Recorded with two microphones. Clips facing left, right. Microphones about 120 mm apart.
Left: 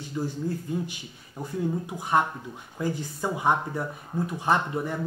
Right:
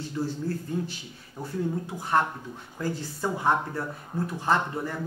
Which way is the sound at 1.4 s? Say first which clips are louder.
Left 1 dB; 15° left (ahead or behind).